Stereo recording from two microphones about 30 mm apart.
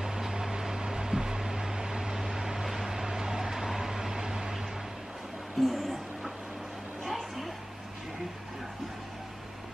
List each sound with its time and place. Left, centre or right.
0.0 s vehicle: centre
5.6 s music: centre
7.1 s a sound: centre